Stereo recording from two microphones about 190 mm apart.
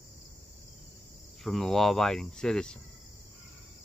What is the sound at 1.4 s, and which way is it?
Speech, centre (ahead or behind).